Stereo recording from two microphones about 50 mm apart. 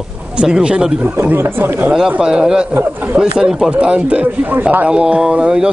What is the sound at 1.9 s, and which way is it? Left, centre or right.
Speech, centre.